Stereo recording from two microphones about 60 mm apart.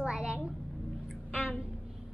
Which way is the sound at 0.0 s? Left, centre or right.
Centre.